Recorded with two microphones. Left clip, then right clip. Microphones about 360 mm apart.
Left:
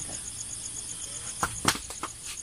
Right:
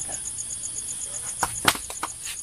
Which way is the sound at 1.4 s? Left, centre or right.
Right.